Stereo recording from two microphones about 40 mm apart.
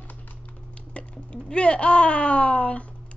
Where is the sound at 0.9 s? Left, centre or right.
Left.